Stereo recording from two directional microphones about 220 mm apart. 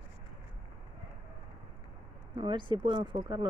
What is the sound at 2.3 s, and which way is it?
Speech, 20° right (ahead or behind).